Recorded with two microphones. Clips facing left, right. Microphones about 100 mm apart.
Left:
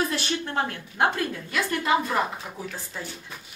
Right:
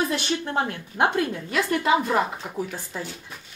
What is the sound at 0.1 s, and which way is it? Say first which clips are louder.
Speech: right 3 dB; 15° right (ahead or behind).